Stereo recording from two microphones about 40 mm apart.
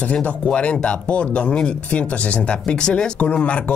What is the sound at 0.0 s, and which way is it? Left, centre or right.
Speech, left.